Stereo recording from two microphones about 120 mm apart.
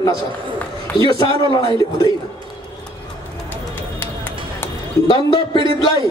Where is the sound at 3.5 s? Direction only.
20° left (ahead or behind).